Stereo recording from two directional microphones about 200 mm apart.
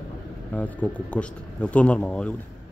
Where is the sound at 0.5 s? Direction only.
5° left (ahead or behind).